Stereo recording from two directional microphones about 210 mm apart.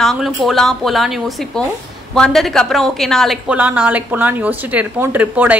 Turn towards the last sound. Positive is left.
turn(degrees=-10)  # may be behind; listen again after turning